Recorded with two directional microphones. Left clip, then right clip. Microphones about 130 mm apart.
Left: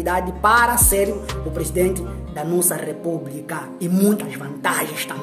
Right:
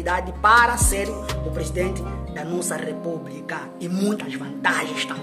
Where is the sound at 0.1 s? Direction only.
15° right (ahead or behind).